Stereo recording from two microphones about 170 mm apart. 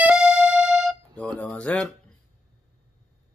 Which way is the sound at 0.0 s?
5° right (ahead or behind).